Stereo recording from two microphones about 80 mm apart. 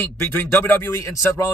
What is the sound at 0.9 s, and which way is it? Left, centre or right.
Speech, left.